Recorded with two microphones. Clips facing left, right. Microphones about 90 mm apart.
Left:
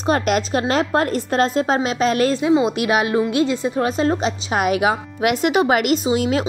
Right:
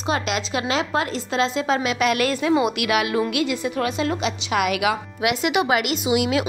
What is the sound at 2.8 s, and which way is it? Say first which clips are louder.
A woman's voice: left 3 dB; 35° left (ahead or behind).